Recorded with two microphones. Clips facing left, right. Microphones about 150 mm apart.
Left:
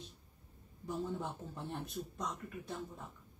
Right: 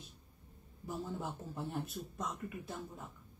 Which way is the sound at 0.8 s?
5° right (ahead or behind).